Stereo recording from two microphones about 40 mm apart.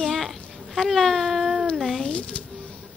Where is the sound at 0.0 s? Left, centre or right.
Centre.